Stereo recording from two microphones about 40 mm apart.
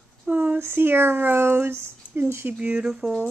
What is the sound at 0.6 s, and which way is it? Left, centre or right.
Speech, right.